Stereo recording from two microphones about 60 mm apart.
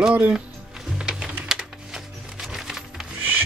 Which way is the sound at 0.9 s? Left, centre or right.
Centre.